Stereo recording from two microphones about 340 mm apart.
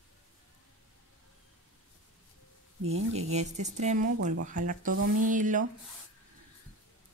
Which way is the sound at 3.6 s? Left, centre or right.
Centre.